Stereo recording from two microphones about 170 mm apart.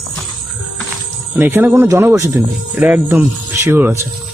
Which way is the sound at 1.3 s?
10° right (ahead or behind).